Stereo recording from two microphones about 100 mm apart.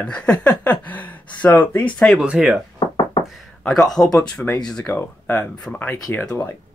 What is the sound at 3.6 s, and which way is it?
Speech, 5° left (ahead or behind).